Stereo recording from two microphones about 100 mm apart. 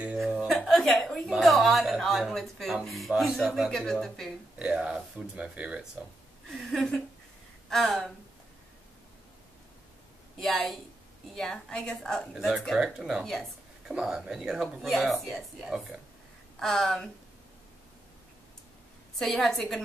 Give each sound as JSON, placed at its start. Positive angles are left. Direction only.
{"t": 0.2, "sound": "a sound", "side_deg": 0}
{"t": 1.3, "sound": "a woman's voice", "side_deg": 0}
{"t": 4.6, "sound": "speech", "side_deg": -10}
{"t": 6.7, "sound": "a woman's voice", "side_deg": 5}
{"t": 10.4, "sound": "a woman's voice", "side_deg": 5}
{"t": 19.1, "sound": "a woman's voice", "side_deg": 0}